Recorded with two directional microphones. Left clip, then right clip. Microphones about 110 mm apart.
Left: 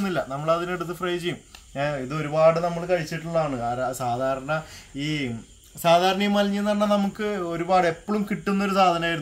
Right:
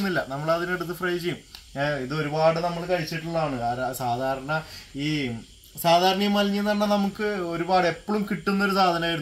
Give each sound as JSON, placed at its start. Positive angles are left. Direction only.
{"t": 0.0, "sound": "a man's voice", "side_deg": 5}
{"t": 3.7, "sound": "speech", "side_deg": 20}
{"t": 5.8, "sound": "speech", "side_deg": 10}